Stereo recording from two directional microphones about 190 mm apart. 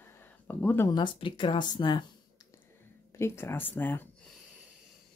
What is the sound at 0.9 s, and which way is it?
Speech, 25° left (ahead or behind).